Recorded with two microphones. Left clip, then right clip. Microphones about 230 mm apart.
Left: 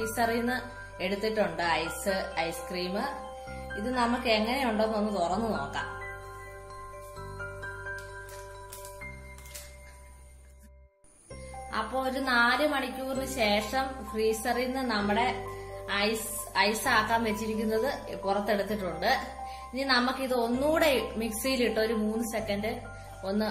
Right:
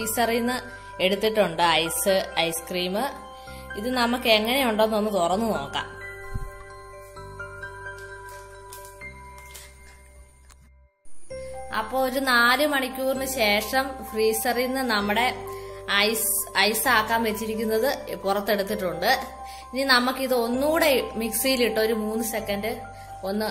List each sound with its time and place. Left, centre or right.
0.1 s a woman's voice: right
3.9 s a woman's voice: right
11.7 s a woman's voice: right
15.8 s music: right
16.5 s a woman's voice: right